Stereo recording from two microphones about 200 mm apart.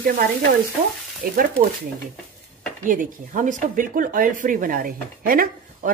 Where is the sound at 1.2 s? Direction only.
45° right (ahead or behind).